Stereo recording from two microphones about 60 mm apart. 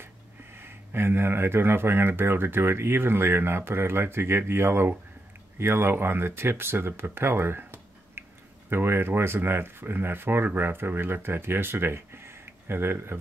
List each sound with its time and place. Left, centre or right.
0.6 s speech: right